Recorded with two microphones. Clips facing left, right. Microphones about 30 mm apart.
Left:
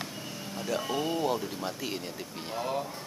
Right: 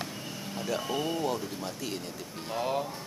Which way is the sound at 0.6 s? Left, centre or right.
Centre.